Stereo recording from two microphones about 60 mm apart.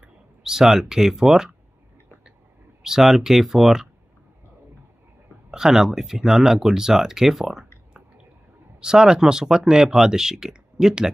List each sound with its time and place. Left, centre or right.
0.0 s speech: centre
2.8 s speech: centre
5.5 s speech: centre
8.8 s speech: centre